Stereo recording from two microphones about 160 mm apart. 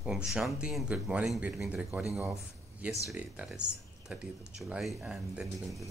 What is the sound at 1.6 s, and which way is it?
Speech, 15° right (ahead or behind).